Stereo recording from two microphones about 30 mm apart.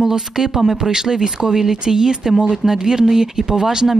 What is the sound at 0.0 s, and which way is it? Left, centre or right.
Speech, centre.